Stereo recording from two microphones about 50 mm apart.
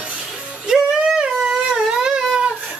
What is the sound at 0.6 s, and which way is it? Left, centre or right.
Music, centre.